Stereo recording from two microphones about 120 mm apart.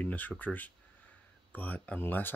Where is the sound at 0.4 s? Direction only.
15° left (ahead or behind).